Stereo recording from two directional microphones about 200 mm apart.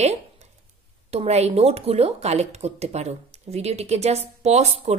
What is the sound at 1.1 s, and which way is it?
Speech, 30° right (ahead or behind).